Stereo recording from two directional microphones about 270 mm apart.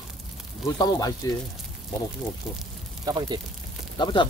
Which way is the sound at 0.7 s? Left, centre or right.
Centre.